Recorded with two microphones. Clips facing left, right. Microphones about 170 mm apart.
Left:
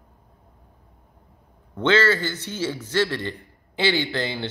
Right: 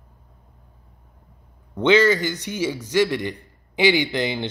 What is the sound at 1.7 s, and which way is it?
A man's voice, 15° right (ahead or behind).